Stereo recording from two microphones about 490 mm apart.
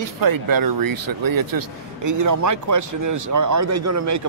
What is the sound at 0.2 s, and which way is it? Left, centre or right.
A man's voice, right.